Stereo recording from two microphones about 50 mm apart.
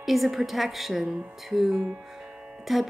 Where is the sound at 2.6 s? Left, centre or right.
Centre.